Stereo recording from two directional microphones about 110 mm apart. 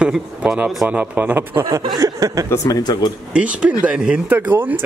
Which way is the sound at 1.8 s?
30° right (ahead or behind).